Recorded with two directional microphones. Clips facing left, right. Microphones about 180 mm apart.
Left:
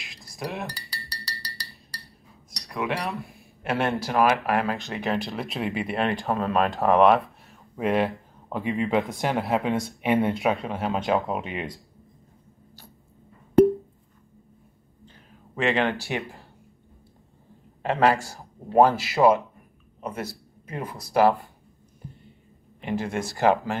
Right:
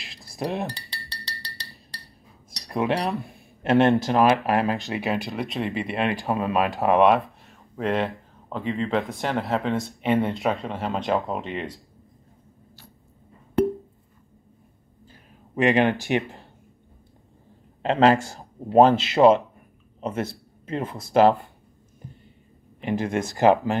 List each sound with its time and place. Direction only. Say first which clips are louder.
0.7 s chink: right 3 dB; 25° right (ahead or behind)
2.7 s speech: right 5 dB; 35° right (ahead or behind)
3.1 s a man's voice: right 4 dB; centre (ahead or behind)
3.6 s speech: right 7 dB; 25° right (ahead or behind)
5.0 s speech: left 2 dB; 5° right (ahead or behind)
6.2 s speech: even; 10° right (ahead or behind); by 10.3 s 10° left (ahead or behind)
10.3 s speech: left 1 dB; centre (ahead or behind)
15.5 s speech: right 4 dB; 15° right (ahead or behind)
17.8 s speech: right 3 dB; 20° right (ahead or behind)
22.8 s speech: right 3 dB; 20° right (ahead or behind)